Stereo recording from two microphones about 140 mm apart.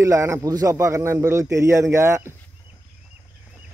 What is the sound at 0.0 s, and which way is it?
A man's voice, 20° right (ahead or behind).